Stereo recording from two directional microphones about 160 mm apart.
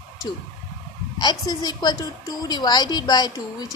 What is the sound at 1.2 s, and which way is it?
A woman's voice, 25° left (ahead or behind).